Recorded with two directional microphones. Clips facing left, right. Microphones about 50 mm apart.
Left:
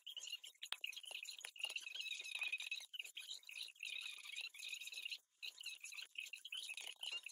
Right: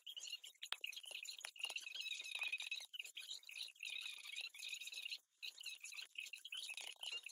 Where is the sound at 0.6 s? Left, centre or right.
Centre.